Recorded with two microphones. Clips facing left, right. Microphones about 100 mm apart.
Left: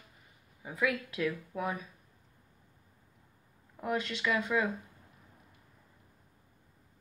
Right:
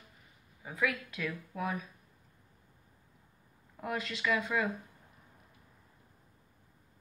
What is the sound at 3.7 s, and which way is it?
Speech, centre (ahead or behind).